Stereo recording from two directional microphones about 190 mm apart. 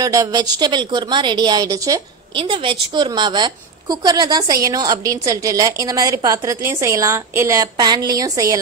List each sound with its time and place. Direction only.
0.0 s a woman's voice: 20° right (ahead or behind)